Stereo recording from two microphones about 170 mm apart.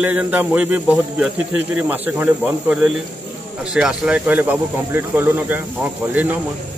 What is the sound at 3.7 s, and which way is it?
Speech, 5° right (ahead or behind).